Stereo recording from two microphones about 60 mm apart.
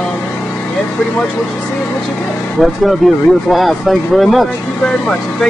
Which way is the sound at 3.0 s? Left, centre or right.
Centre.